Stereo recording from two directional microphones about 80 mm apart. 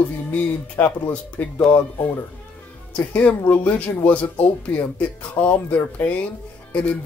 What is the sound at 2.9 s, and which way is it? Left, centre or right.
Speech, centre.